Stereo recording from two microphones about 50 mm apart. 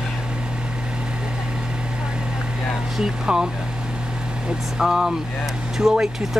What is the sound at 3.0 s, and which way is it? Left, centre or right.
Speech, centre.